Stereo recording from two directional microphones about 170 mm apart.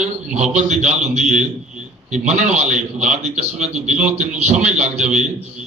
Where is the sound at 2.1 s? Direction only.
45° right (ahead or behind).